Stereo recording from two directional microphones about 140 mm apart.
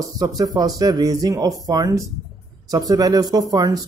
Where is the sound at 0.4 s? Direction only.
25° right (ahead or behind).